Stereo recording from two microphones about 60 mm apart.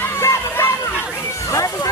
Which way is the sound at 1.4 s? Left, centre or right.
Left.